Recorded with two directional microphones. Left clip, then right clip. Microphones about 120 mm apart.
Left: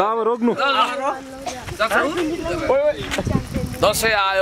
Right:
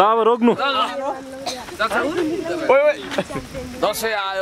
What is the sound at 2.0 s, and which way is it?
Speech, centre (ahead or behind).